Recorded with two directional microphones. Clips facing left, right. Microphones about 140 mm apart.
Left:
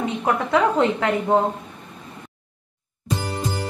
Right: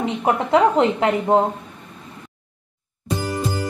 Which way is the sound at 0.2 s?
25° right (ahead or behind).